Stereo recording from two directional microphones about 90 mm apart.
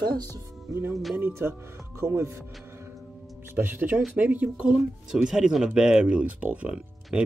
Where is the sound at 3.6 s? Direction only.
20° right (ahead or behind).